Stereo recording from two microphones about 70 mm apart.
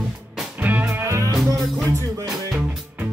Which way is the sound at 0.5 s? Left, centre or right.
Right.